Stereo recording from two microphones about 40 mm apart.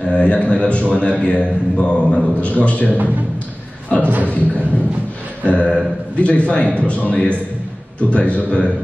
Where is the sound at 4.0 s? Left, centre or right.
Right.